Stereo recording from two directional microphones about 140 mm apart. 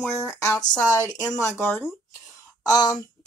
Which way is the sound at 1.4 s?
15° left (ahead or behind).